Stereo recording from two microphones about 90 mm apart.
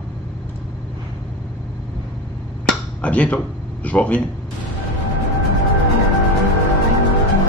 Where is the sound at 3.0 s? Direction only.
15° left (ahead or behind).